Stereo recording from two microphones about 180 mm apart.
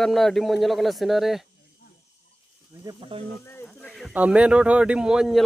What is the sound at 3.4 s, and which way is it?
Speech, 15° left (ahead or behind).